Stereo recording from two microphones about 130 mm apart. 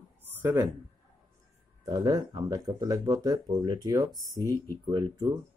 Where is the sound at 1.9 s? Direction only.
30° right (ahead or behind).